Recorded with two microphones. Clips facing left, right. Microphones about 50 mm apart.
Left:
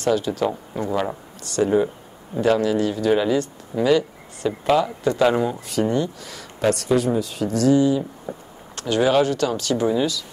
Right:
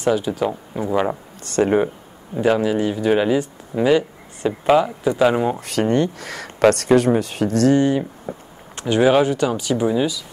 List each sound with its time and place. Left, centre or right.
0.0 s speech: centre
1.4 s speech: right
2.4 s speech: centre
5.7 s speech: right
8.7 s speech: right